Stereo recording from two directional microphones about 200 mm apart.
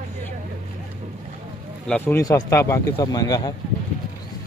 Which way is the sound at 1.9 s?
10° left (ahead or behind).